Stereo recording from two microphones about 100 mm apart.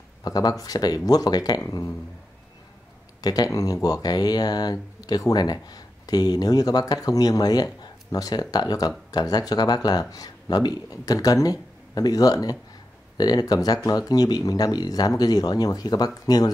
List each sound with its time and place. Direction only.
0.2 s speech: 40° left (ahead or behind)
3.2 s speech: 40° left (ahead or behind)